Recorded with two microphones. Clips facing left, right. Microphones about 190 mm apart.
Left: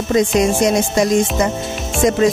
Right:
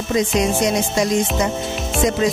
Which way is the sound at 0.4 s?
50° left (ahead or behind).